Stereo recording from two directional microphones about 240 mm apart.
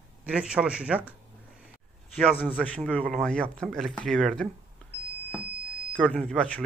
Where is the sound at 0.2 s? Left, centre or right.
Centre.